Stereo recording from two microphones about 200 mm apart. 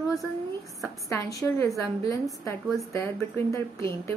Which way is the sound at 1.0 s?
15° left (ahead or behind).